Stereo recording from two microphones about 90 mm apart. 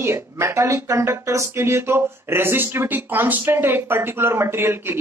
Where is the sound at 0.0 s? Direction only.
30° right (ahead or behind).